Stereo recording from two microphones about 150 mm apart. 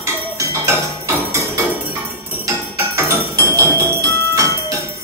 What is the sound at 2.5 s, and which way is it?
Music, 20° right (ahead or behind).